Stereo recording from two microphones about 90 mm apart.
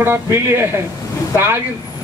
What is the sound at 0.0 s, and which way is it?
Speech, 25° right (ahead or behind).